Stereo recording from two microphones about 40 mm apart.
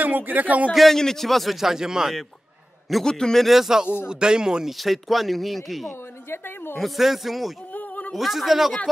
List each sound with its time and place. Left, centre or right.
0.0 s speech: right
0.7 s speech: centre
1.6 s a man's voice: centre
3.0 s a man's voice: centre
3.3 s a man's voice: centre
4.1 s speech: right
4.6 s speech: centre
7.7 s a sound: left
8.1 s speech: centre